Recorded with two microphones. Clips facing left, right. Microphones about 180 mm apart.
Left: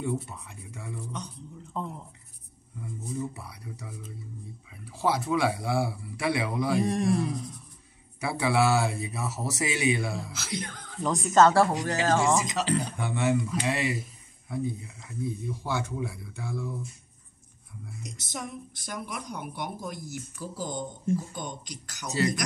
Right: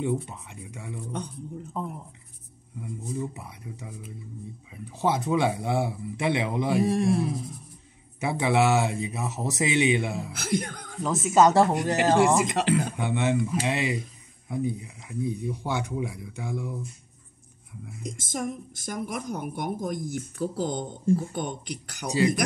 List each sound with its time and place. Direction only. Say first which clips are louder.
0.0 s speech: right 3 dB; 15° right (ahead or behind)
1.7 s a sound: left 1 dB; 5° right (ahead or behind)
2.8 s speech: right 1 dB; 20° right (ahead or behind)
6.8 s a sound: right 4 dB; centre (ahead or behind)
8.2 s speech: right 2 dB; 20° right (ahead or behind)
10.3 s a woman's voice: right 7 dB; 55° right (ahead or behind)
11.0 s speech: right 1 dB; 5° right (ahead or behind); by 12.2 s 20° right (ahead or behind)
12.4 s speech: right 4 dB; 55° right (ahead or behind)
12.9 s speech: right 1 dB; 20° right (ahead or behind)
18.0 s a woman's voice: right 7 dB; 50° right (ahead or behind)
22.0 s speech: right 4 dB; 15° right (ahead or behind)